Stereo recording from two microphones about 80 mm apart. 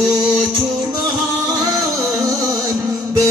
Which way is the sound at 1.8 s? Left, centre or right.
Right.